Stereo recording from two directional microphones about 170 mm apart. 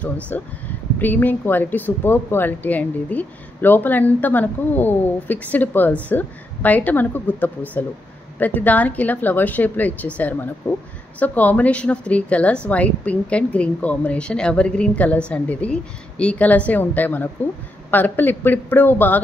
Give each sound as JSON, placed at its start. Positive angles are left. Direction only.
{"t": 0.3, "sound": "speech", "side_deg": 10}